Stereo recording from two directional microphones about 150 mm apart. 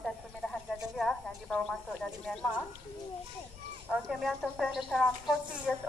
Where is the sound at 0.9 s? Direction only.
Centre (ahead or behind).